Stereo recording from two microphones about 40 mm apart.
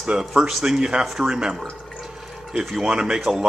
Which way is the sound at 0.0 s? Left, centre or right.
Centre.